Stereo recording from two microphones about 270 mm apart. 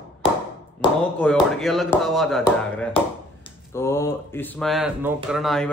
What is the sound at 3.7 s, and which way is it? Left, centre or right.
Speech, centre.